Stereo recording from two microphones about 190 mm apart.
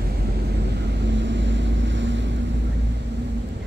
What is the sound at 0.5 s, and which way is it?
Vehicle, 60° right (ahead or behind).